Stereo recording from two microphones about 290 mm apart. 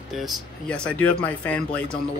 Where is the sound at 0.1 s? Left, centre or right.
Centre.